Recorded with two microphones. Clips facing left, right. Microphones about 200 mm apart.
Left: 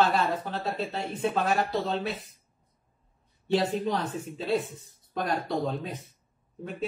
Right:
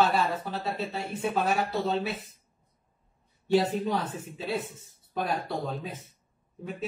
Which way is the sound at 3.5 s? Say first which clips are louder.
Right 1 dB; 5° right (ahead or behind).